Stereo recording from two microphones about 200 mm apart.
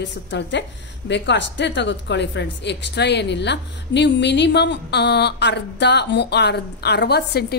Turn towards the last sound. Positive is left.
turn(degrees=55)  # may be behind; listen again after turning